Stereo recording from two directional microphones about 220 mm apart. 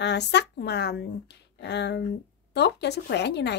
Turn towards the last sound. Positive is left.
turn(degrees=50)  # may be behind; listen again after turning